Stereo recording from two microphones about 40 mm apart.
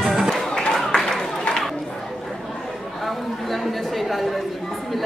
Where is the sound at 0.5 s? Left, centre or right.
Centre.